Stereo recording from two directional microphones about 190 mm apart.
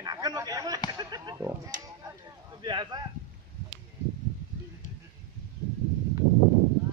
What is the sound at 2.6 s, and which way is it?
Speech, 20° right (ahead or behind).